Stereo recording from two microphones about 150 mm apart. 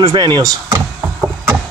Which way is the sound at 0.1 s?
30° right (ahead or behind).